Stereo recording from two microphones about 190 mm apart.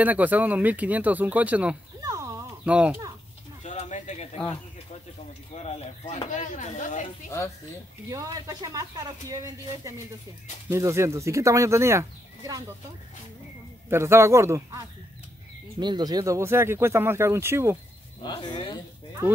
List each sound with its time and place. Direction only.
0.0 s speech: 10° right (ahead or behind)
2.0 s a sound: 15° right (ahead or behind)
2.6 s speech: 5° right (ahead or behind)
3.6 s speech: 35° left (ahead or behind)
5.5 s speech: 35° left (ahead or behind)
7.2 s speech: 15° left (ahead or behind)
8.1 s speech: 20° right (ahead or behind)
13.8 s speech: 15° right (ahead or behind)
18.2 s speech: 25° left (ahead or behind)